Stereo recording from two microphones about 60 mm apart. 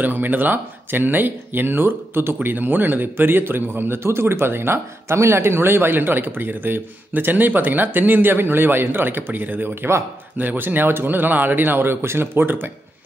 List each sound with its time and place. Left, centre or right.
0.0 s speech: right